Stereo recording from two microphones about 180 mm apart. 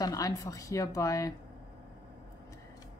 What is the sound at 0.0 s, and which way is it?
Speech, 20° left (ahead or behind).